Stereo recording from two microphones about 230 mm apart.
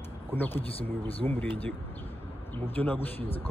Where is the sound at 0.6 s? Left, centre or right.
Left.